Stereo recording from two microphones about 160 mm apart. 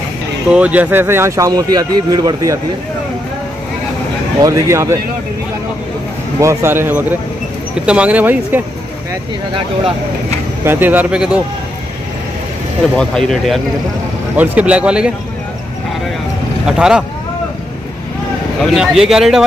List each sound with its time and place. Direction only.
0.5 s speech: 10° right (ahead or behind)
4.4 s speech: 20° right (ahead or behind)
6.4 s speech: 15° right (ahead or behind)
10.6 s speech: 15° right (ahead or behind)
12.9 s speech: 5° left (ahead or behind)
14.3 s speech: 10° right (ahead or behind)
16.6 s speech: 5° right (ahead or behind)
18.8 s speech: 5° right (ahead or behind)